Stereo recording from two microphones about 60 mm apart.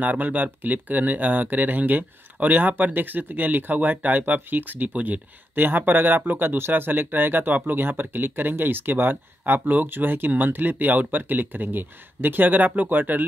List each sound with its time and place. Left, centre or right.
0.0 s speech: right